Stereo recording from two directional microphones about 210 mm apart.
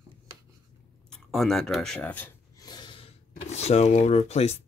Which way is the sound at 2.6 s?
20° left (ahead or behind).